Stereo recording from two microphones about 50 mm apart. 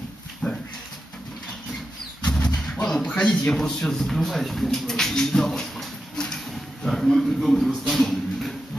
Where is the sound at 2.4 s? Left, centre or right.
Centre.